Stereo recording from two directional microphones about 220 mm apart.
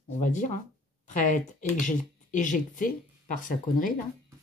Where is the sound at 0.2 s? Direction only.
35° left (ahead or behind).